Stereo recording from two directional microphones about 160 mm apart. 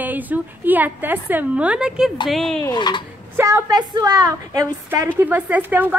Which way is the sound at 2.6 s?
25° left (ahead or behind).